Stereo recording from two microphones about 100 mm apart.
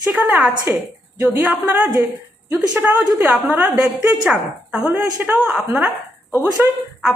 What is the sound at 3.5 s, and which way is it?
Speech, 20° right (ahead or behind).